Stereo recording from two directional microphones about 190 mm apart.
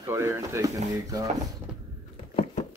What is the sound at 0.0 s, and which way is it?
Speech, 15° right (ahead or behind).